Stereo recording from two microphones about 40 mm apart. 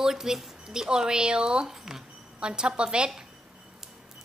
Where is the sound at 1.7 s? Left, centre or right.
Centre.